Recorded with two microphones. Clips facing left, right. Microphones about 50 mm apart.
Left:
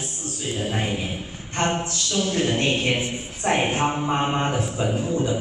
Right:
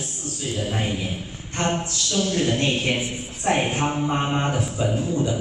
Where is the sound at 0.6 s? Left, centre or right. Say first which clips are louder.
Even; centre.